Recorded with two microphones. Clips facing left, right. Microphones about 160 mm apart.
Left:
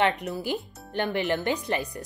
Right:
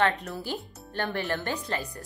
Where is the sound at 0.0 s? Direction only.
20° left (ahead or behind).